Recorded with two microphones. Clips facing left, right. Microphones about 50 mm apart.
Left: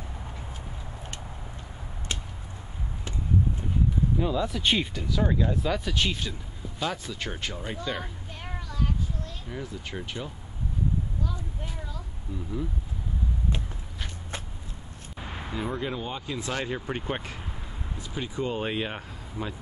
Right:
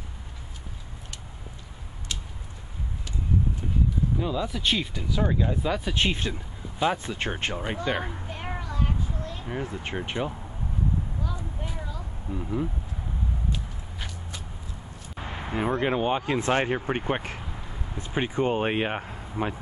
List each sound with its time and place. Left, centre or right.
4.2 s speech: centre
4.9 s speech: centre
5.9 s speech: right
6.8 s a sound: right
9.6 s speech: right
11.2 s vehicle: centre
12.4 s speech: right
15.1 s a sound: centre
15.5 s speech: right